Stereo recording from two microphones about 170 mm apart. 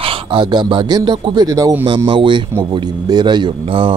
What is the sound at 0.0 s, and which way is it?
Speech, 30° right (ahead or behind).